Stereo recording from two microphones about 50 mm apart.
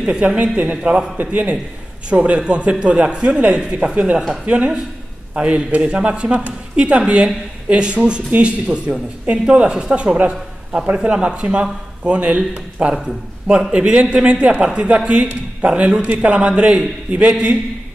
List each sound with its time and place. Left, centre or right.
0.1 s speech: right
0.8 s a man's voice: centre
1.1 s a man's voice: right